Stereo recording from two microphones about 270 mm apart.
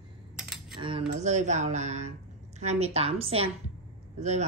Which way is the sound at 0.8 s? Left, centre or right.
Centre.